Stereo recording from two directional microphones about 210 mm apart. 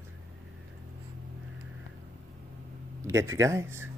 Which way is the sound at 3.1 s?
15° right (ahead or behind).